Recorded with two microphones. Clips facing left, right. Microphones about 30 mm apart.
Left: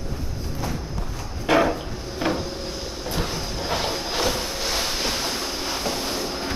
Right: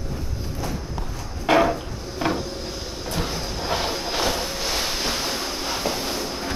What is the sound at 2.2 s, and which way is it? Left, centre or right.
Cupboard open or close, centre.